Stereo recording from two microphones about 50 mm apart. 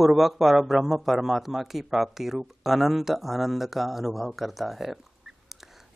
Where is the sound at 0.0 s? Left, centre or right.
Centre.